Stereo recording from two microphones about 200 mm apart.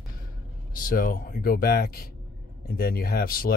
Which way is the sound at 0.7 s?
45° left (ahead or behind).